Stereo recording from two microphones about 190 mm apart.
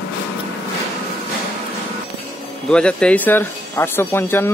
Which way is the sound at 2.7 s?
5° left (ahead or behind).